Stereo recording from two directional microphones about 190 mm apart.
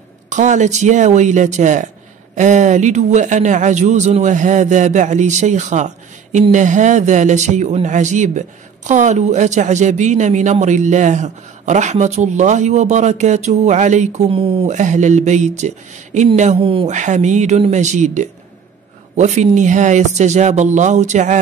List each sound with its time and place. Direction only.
0.3 s a man's voice: 40° right (ahead or behind)